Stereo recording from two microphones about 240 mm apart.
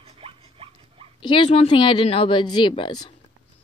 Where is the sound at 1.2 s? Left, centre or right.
Centre.